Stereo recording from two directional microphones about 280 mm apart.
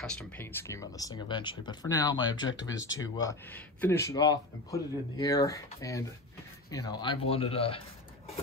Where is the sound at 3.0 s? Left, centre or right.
Centre.